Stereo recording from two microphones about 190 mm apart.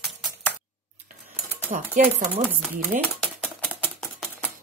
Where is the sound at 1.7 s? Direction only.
40° right (ahead or behind).